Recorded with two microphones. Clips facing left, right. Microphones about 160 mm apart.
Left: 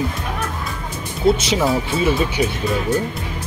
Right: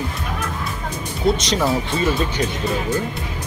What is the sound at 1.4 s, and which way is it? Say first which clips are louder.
Speech: left 1 dB; 5° left (ahead or behind).